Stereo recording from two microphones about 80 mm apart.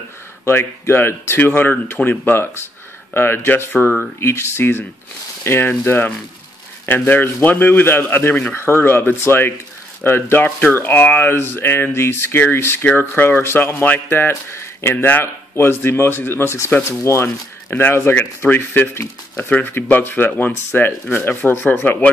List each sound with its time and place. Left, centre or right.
0.5 s speech: left
17.6 s speech: left